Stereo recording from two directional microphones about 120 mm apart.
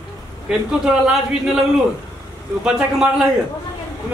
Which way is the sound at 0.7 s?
5° right (ahead or behind).